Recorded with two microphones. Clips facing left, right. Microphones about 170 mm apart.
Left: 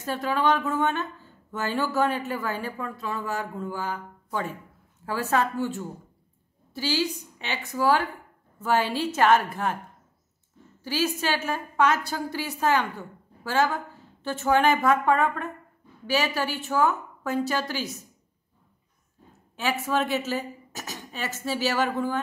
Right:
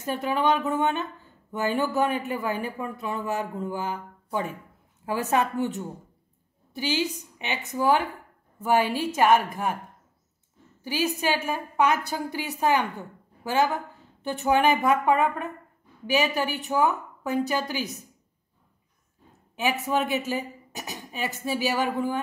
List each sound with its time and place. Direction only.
0.0 s a woman's voice: 15° right (ahead or behind)
10.8 s speech: 15° right (ahead or behind)
19.5 s speech: 15° right (ahead or behind)